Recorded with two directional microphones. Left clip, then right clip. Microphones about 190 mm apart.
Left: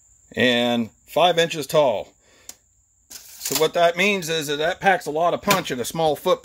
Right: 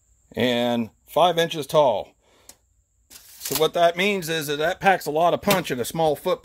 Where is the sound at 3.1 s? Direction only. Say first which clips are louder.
Left 5 dB; centre (ahead or behind).